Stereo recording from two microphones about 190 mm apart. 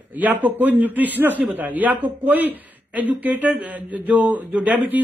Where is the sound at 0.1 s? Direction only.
10° right (ahead or behind).